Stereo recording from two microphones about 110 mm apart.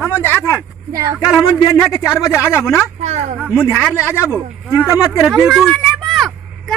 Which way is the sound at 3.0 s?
80° right.